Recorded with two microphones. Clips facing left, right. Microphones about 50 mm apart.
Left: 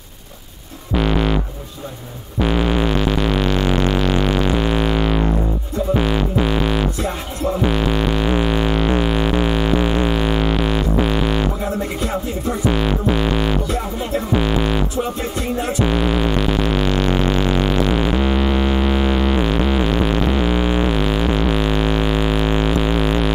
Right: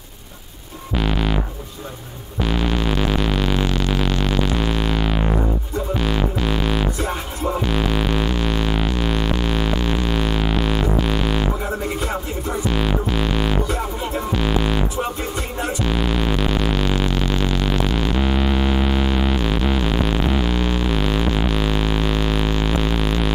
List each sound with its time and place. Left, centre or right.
0.9 s music: centre
2.4 s hum: centre
3.0 s a sound: centre
4.6 s music: centre
8.3 s music: centre
12.7 s music: centre
15.9 s hum: centre
17.1 s music: centre
17.8 s a sound: centre
19.3 s music: centre
20.9 s a sound: centre
21.5 s music: centre